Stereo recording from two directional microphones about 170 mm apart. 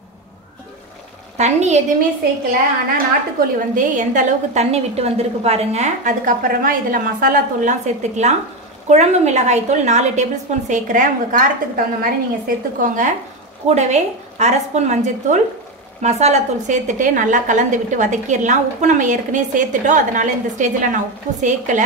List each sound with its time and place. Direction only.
1.4 s a woman's voice: 40° right (ahead or behind)
3.3 s a woman's voice: 50° right (ahead or behind)